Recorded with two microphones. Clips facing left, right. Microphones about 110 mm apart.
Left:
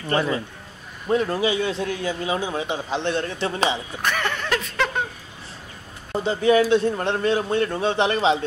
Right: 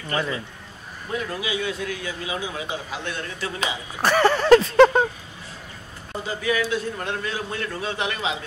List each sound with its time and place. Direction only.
0.1 s a man's voice: 35° left (ahead or behind)
4.0 s speech: 35° right (ahead or behind)
6.2 s a man's voice: 30° left (ahead or behind)